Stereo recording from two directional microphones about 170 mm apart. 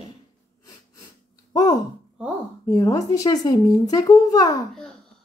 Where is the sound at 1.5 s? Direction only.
20° left (ahead or behind).